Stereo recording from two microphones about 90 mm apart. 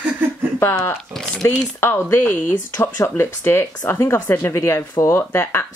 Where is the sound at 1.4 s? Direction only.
25° left (ahead or behind).